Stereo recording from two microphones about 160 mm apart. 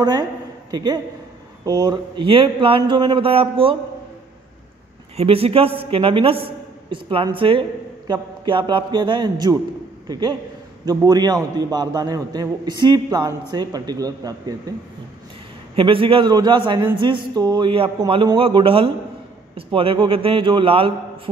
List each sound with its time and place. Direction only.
0.0 s a woman's voice: 25° right (ahead or behind)
5.1 s a man's voice: 35° right (ahead or behind)
15.7 s a man's voice: 35° right (ahead or behind)